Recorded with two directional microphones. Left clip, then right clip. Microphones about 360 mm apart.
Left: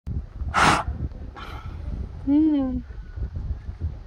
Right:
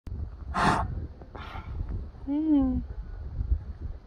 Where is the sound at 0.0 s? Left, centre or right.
Centre.